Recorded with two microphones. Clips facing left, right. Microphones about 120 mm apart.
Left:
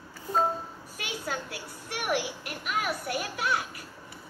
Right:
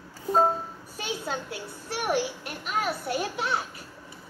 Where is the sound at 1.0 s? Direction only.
25° right (ahead or behind).